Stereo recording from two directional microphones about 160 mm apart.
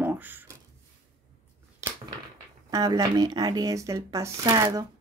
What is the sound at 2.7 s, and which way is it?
Speech, 25° right (ahead or behind).